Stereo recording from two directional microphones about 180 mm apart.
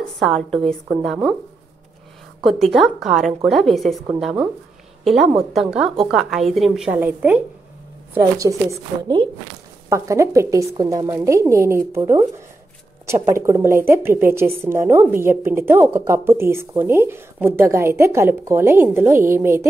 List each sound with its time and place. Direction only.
0.2 s a woman's voice: centre (ahead or behind)
2.4 s a woman's voice: centre (ahead or behind)